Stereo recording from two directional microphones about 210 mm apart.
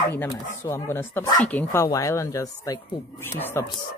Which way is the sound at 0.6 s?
10° left (ahead or behind).